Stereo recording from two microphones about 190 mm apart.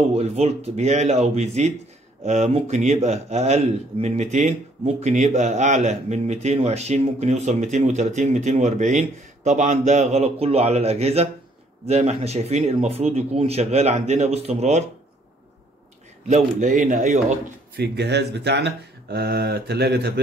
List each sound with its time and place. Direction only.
0.1 s a man's voice: 35° right (ahead or behind)
16.3 s a man's voice: 40° right (ahead or behind)
17.7 s speech: 60° right (ahead or behind)